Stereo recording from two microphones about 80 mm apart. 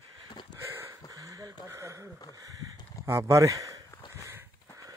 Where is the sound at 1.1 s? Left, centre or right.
Right.